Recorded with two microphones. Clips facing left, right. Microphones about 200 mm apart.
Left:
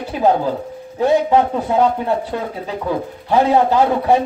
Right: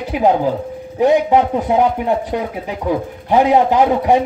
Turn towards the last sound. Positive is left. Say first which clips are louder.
# right 1 dB
turn(degrees=-15)  # may be behind; listen again after turning